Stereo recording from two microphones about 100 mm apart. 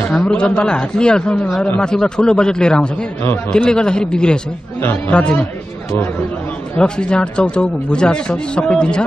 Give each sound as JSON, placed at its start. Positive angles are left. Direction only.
{"t": 0.1, "sound": "speech", "side_deg": 5}
{"t": 6.8, "sound": "speech", "side_deg": 10}